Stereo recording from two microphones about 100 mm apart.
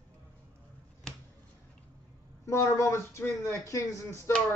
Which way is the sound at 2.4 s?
30° left (ahead or behind).